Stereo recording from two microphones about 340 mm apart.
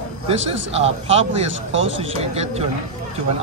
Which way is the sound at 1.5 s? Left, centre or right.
Right.